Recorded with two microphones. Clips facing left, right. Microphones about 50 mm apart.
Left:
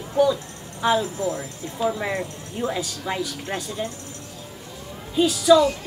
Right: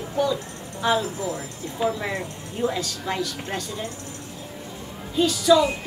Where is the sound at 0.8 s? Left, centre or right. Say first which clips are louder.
Left 2 dB; centre.